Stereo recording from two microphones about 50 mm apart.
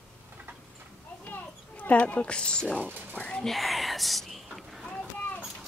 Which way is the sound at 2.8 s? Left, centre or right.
Right.